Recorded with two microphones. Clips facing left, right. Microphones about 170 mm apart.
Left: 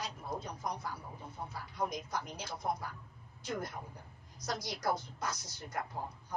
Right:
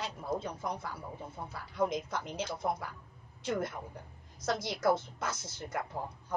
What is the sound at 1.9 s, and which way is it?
Speech, 25° right (ahead or behind).